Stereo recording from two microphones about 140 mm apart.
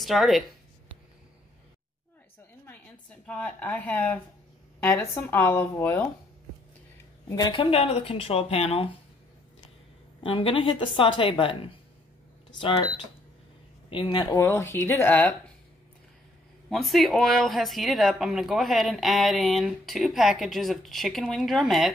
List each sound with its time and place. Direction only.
0.0 s speech: centre (ahead or behind)
2.6 s a woman's voice: 10° left (ahead or behind)
7.2 s a woman's voice: 25° left (ahead or behind)
7.7 s speech: 45° left (ahead or behind)
10.2 s a woman's voice: 40° left (ahead or behind)
14.4 s speech: 15° left (ahead or behind)
16.6 s speech: centre (ahead or behind)